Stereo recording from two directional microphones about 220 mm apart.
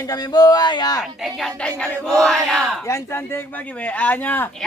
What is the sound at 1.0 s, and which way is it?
Speech, centre (ahead or behind).